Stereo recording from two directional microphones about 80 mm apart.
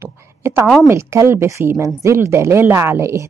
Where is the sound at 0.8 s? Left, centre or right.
Right.